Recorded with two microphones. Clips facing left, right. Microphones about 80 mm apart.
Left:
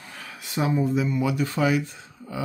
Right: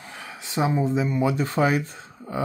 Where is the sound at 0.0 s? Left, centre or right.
Centre.